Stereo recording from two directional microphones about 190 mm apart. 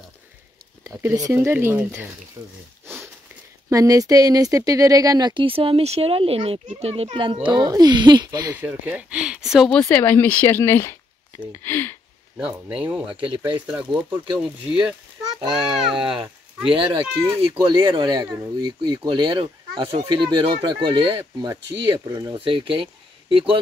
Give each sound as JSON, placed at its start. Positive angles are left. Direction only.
{"t": 0.8, "sound": "speech", "side_deg": -20}
{"t": 3.7, "sound": "speech", "side_deg": -20}
{"t": 8.6, "sound": "speech", "side_deg": -5}
{"t": 12.4, "sound": "speech", "side_deg": -5}
{"t": 13.1, "sound": "speech", "side_deg": -25}
{"t": 13.7, "sound": "speech", "side_deg": -5}
{"t": 16.7, "sound": "speech", "side_deg": -30}